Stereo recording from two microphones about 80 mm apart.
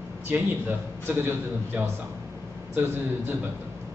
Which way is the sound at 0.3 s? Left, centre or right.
Right.